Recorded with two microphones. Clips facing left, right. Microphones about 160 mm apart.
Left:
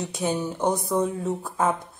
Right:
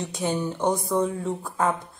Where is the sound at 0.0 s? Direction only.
5° left (ahead or behind).